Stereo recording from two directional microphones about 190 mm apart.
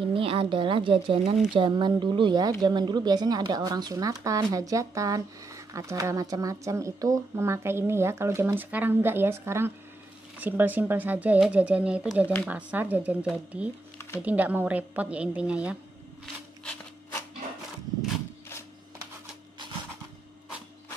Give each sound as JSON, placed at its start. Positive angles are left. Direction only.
{"t": 0.1, "sound": "a woman's voice", "side_deg": -30}